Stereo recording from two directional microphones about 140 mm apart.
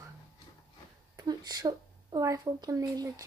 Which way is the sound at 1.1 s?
30° right (ahead or behind).